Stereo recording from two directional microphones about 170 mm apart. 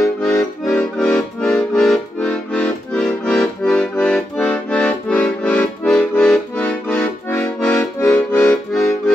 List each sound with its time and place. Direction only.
0.2 s accordion: 5° left (ahead or behind)